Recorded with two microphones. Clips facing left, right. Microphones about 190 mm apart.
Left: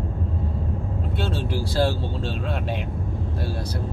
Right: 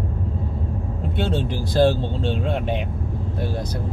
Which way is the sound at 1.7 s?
20° right (ahead or behind).